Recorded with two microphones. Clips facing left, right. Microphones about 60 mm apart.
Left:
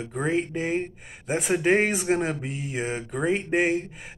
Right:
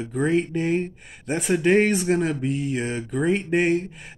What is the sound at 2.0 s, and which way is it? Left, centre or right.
Speech, left.